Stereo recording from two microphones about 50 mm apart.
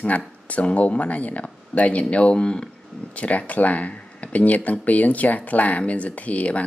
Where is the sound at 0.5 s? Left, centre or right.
Left.